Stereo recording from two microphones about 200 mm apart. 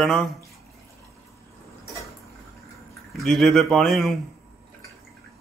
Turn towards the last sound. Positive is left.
turn(degrees=0)  # may be behind; listen again after turning